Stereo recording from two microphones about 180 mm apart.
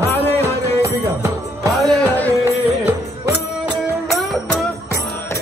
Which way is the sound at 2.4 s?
15° right (ahead or behind).